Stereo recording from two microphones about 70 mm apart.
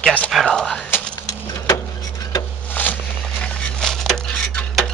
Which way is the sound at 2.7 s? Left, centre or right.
Left.